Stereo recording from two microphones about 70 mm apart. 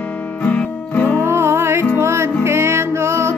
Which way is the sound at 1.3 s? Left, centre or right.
Right.